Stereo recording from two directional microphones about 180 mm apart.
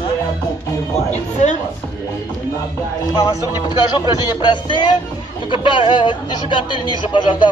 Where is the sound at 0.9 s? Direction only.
40° left (ahead or behind).